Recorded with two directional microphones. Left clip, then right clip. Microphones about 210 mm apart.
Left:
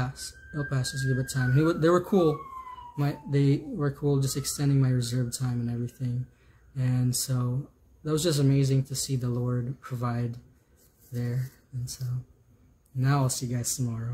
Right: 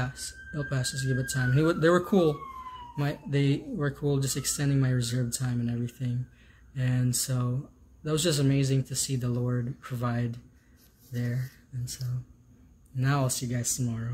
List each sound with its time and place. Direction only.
0.0 s speech: 5° left (ahead or behind)